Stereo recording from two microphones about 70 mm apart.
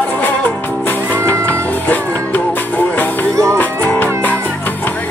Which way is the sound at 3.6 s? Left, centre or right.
Left.